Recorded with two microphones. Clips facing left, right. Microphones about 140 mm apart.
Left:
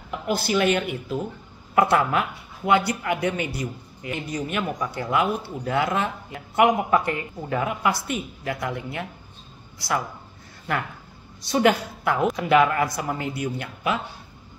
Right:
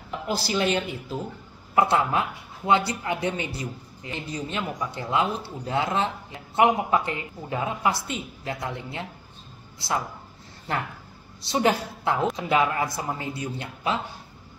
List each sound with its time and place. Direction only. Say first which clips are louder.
0.4 s speech: left 4 dB; 30° right (ahead or behind)
1.8 s speech: left 2 dB; 25° right (ahead or behind)
11.4 s speech: left 3 dB; 25° right (ahead or behind)